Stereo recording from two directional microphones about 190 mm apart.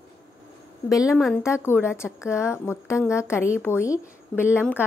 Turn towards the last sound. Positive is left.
turn(degrees=10)  # may be behind; listen again after turning